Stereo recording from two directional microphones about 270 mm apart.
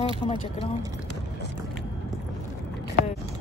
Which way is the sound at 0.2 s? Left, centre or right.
Left.